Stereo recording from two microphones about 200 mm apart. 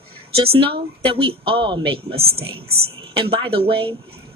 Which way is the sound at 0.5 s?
25° right (ahead or behind).